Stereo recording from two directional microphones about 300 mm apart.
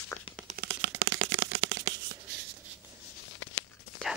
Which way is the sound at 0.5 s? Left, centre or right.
Right.